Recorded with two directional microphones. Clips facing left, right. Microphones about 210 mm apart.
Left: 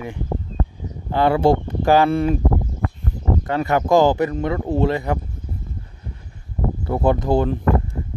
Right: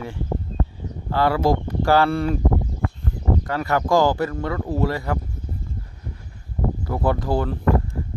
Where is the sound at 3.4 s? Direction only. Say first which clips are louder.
Left 6 dB; 20° left (ahead or behind).